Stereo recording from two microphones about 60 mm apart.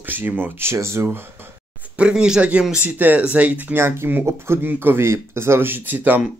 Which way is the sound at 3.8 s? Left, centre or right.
Right.